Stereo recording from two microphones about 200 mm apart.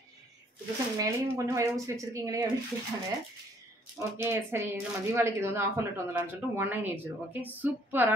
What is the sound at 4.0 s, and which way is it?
Speech, 15° right (ahead or behind).